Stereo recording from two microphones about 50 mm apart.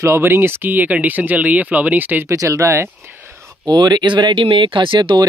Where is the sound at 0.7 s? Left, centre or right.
Right.